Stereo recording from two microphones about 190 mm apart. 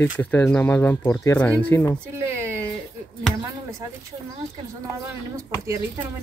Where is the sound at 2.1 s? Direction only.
10° right (ahead or behind).